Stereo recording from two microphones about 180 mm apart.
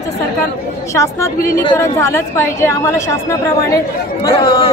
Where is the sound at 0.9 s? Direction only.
15° left (ahead or behind).